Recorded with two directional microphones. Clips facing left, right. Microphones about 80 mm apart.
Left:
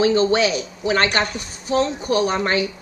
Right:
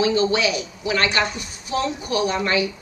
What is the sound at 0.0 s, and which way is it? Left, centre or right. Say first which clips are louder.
Speech: left 3 dB; left.